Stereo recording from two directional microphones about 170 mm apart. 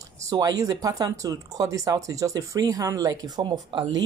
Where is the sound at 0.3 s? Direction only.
20° right (ahead or behind).